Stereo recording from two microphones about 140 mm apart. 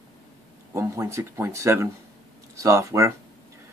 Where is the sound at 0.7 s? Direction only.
20° right (ahead or behind).